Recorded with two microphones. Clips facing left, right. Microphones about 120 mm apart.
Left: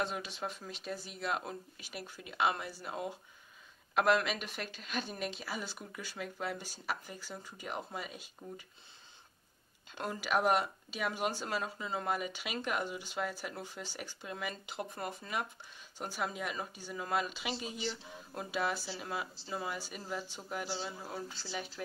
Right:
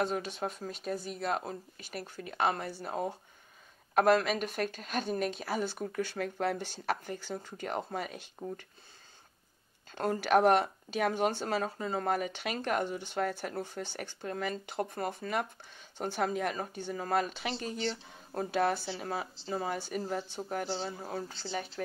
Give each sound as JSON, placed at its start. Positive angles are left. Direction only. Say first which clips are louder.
{"t": 0.0, "sound": "speech", "louder": "right 5 dB", "side_deg": -45}
{"t": 2.0, "sound": "speech", "louder": "right 2 dB", "side_deg": -50}
{"t": 8.4, "sound": "speech", "louder": "right 8 dB", "side_deg": -40}
{"t": 9.9, "sound": "speech", "louder": "right 7 dB", "side_deg": -50}
{"t": 17.5, "sound": "speech", "louder": "right 3 dB", "side_deg": 10}
{"t": 18.5, "sound": "speech", "louder": "right 5 dB", "side_deg": -60}
{"t": 18.9, "sound": "speech", "louder": "right 3 dB", "side_deg": -40}